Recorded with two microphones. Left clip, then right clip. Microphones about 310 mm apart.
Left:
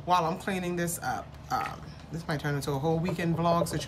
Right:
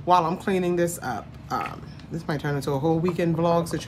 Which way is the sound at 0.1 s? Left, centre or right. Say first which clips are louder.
Right 6 dB; centre.